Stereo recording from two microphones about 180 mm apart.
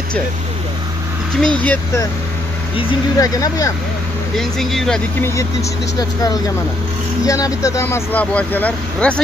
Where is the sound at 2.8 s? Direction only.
25° left (ahead or behind).